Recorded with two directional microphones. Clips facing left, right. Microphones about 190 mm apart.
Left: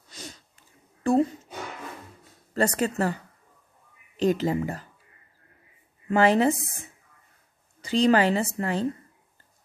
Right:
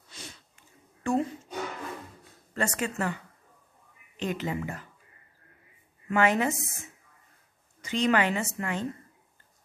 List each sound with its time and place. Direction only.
0.1 s sniff: 40° left (ahead or behind)
1.0 s speech: 35° left (ahead or behind)
2.5 s a woman's voice: 35° left (ahead or behind)
4.2 s a woman's voice: 35° left (ahead or behind)
6.0 s a woman's voice: 30° left (ahead or behind)